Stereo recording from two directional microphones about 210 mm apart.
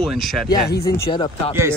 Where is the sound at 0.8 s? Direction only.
15° left (ahead or behind).